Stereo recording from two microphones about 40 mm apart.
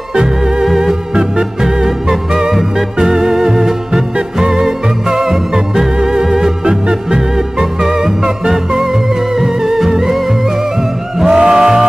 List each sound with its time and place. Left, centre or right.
0.1 s music: centre